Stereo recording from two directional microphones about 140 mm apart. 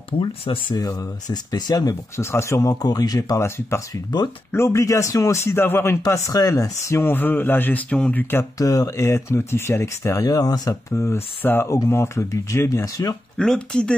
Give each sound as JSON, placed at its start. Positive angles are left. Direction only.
{"t": 0.1, "sound": "a man's voice", "side_deg": 35}
{"t": 13.4, "sound": "speech", "side_deg": 5}